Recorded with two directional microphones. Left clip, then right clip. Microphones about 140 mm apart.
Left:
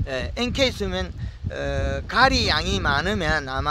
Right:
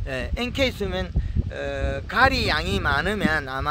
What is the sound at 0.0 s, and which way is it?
Speech, 30° left (ahead or behind).